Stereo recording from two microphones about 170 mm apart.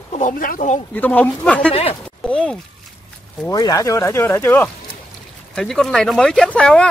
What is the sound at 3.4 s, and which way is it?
Speech, 20° left (ahead or behind).